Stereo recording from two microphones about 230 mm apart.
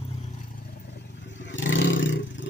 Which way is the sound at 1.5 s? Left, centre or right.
Left.